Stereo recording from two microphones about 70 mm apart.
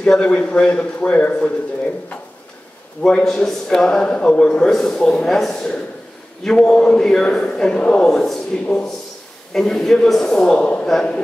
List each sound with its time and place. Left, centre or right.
0.0 s a man's voice: centre
3.0 s a man's voice: centre